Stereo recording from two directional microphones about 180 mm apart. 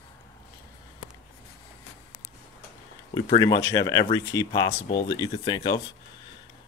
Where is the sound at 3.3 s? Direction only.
20° left (ahead or behind).